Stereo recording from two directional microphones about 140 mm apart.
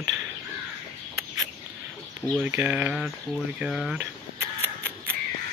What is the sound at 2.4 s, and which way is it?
Speech, 15° right (ahead or behind).